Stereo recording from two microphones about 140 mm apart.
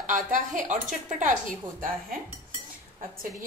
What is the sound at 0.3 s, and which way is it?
Speech, 65° right (ahead or behind).